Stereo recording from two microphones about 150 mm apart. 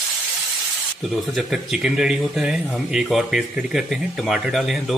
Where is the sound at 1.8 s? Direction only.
5° right (ahead or behind).